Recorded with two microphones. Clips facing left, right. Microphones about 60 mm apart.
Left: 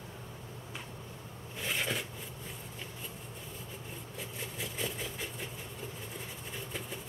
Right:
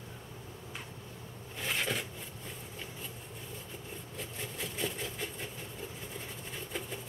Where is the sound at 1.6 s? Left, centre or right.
Centre.